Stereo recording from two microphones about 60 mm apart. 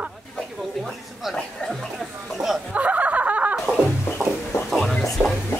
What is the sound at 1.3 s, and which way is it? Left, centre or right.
Speech, centre.